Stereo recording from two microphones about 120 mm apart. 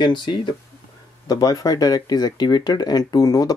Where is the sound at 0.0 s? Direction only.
40° left (ahead or behind).